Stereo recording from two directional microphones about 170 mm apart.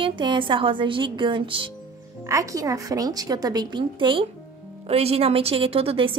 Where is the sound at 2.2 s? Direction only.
20° right (ahead or behind).